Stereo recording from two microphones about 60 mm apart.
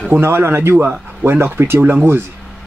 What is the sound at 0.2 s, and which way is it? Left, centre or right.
Speech, right.